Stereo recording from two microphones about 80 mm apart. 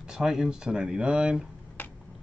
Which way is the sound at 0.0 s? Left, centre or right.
Centre.